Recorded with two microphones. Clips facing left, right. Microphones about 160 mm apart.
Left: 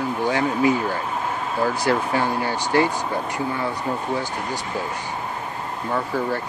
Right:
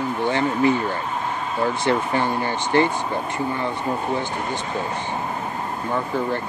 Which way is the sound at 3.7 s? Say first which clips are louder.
Right 1 dB; 40° left (ahead or behind).